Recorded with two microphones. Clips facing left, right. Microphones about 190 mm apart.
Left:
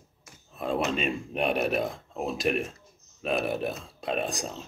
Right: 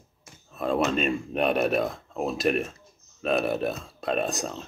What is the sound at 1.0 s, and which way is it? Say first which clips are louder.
Speech: right 3 dB; 50° right (ahead or behind).